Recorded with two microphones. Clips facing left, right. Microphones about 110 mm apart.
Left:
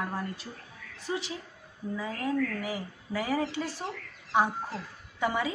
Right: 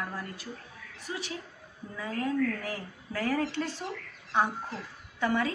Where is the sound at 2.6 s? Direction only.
10° left (ahead or behind).